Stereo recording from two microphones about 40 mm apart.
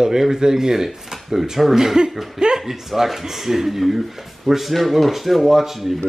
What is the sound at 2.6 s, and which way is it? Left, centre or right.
Speech, centre.